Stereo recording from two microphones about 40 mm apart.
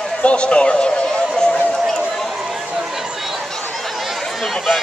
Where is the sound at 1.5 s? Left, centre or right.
Centre.